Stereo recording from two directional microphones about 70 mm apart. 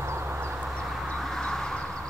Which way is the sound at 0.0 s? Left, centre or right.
Right.